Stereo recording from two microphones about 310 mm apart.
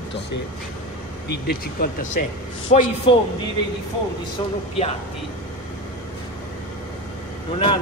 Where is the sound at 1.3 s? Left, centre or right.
Left.